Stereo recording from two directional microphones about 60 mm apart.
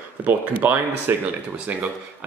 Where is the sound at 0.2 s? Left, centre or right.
Right.